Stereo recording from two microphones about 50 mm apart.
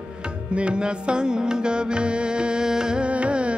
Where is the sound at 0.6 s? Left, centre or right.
Right.